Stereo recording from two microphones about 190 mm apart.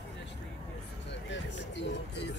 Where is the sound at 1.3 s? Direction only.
70° left (ahead or behind).